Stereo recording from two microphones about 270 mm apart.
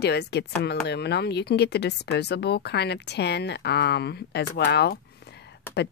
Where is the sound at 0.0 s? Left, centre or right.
Left.